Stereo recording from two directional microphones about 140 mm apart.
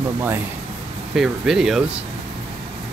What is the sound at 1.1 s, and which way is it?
Speech, 5° right (ahead or behind).